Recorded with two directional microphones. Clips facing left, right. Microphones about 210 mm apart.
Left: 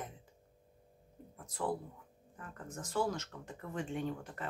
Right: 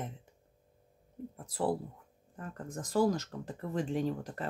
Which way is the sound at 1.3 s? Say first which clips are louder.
Right 5 dB; 35° right (ahead or behind).